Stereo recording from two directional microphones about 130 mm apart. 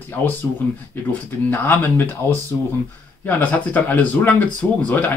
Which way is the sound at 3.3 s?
10° left (ahead or behind).